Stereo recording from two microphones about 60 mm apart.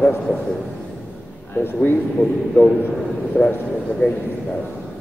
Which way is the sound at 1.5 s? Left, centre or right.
Left.